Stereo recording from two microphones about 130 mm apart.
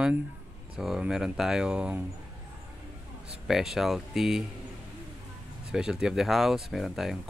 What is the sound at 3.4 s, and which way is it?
Speech, 5° right (ahead or behind).